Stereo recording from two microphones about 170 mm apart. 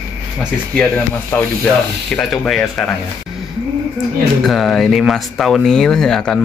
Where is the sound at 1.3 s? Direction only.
15° left (ahead or behind).